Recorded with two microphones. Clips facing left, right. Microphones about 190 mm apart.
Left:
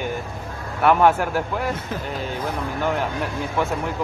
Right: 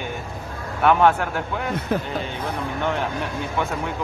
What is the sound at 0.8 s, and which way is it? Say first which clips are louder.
Speech: left 1 dB; 5° left (ahead or behind).